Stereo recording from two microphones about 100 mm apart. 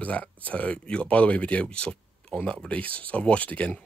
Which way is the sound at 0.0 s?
15° left (ahead or behind).